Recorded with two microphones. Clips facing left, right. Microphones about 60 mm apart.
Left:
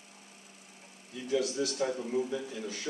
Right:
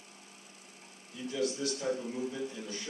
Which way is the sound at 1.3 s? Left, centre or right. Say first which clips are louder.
Left 3 dB; left.